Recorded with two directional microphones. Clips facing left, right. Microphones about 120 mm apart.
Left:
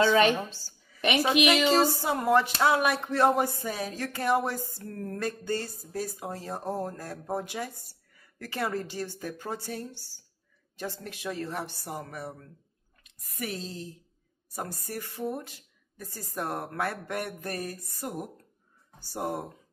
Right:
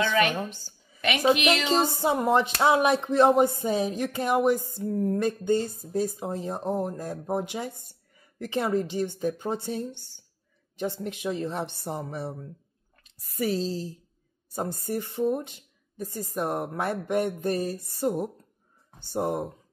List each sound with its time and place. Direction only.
0.5 s a sound: 20° right (ahead or behind)
1.3 s speech: 15° left (ahead or behind)
1.8 s speech: 20° right (ahead or behind)